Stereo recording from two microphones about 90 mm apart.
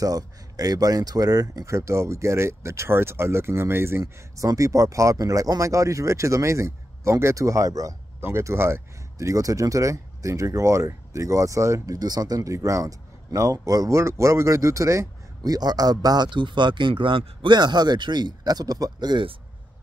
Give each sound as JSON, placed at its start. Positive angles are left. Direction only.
{"t": 0.0, "sound": "speech", "side_deg": -45}
{"t": 8.2, "sound": "speech", "side_deg": -30}